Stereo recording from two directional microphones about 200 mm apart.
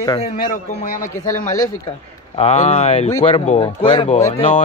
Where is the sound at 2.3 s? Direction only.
30° left (ahead or behind).